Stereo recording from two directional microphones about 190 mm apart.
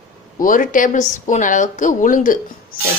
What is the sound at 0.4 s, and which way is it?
Speech, 45° left (ahead or behind).